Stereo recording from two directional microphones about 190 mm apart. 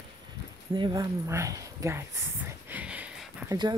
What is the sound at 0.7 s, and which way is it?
Speech, 20° right (ahead or behind).